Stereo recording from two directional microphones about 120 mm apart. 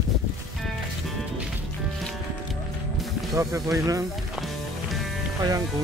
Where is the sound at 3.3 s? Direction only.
25° right (ahead or behind).